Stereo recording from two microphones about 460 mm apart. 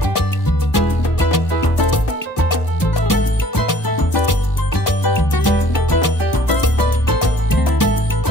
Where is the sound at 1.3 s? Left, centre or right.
Left.